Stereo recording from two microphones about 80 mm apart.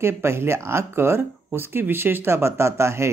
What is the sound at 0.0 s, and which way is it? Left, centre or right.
Speech, right.